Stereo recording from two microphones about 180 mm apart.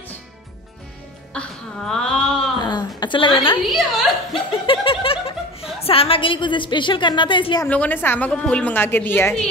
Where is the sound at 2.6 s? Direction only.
25° left (ahead or behind).